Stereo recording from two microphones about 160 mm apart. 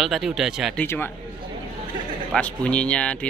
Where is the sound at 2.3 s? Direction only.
10° left (ahead or behind).